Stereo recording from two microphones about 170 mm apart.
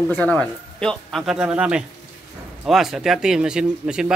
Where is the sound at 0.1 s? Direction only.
5° left (ahead or behind).